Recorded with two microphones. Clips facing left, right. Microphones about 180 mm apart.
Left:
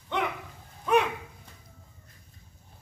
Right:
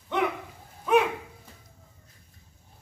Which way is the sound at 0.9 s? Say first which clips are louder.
Right 2 dB; 5° right (ahead or behind).